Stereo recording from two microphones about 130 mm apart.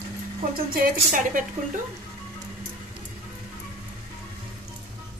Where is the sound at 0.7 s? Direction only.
90° right.